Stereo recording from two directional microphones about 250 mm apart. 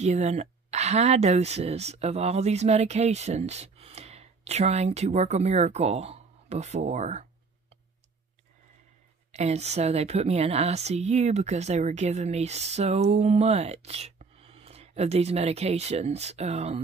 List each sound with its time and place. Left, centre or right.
0.0 s a woman's voice: right
9.3 s a woman's voice: right